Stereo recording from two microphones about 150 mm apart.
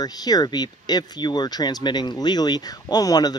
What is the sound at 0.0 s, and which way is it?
Speech, 25° left (ahead or behind).